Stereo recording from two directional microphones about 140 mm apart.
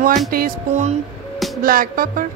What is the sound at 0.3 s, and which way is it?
Music, 90° right.